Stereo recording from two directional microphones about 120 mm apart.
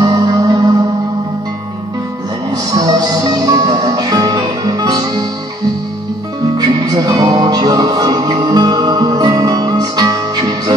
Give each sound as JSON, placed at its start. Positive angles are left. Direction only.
{"t": 0.0, "sound": "music", "side_deg": -35}
{"t": 2.5, "sound": "music", "side_deg": -30}
{"t": 6.4, "sound": "music", "side_deg": -35}